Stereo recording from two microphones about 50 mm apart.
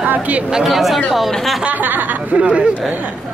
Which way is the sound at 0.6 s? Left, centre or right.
Centre.